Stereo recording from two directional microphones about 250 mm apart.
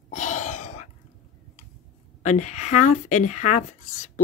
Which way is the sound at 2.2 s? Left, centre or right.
Left.